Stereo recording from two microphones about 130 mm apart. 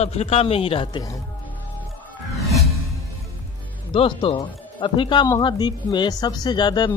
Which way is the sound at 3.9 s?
40° left (ahead or behind).